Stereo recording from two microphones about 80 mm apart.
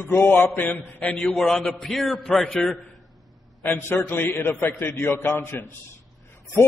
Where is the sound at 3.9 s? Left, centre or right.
Left.